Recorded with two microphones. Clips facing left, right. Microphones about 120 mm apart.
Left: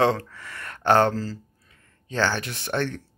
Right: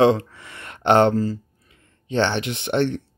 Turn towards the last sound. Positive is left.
turn(degrees=-20)  # may be behind; listen again after turning